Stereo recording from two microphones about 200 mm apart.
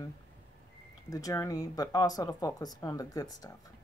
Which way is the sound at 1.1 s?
15° left (ahead or behind).